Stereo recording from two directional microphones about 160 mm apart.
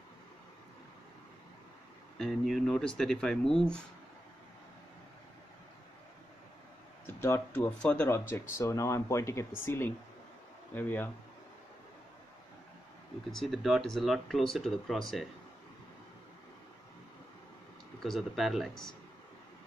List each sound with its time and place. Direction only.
2.1 s speech: centre (ahead or behind)
7.2 s speech: 15° left (ahead or behind)
13.3 s speech: centre (ahead or behind)
18.0 s speech: centre (ahead or behind)